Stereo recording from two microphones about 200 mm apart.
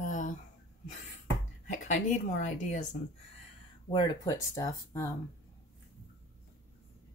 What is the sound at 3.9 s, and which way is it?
Speech, 20° left (ahead or behind).